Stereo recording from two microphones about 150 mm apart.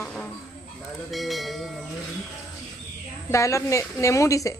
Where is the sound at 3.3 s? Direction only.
20° left (ahead or behind).